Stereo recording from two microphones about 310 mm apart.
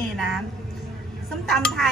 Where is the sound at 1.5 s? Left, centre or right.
Centre.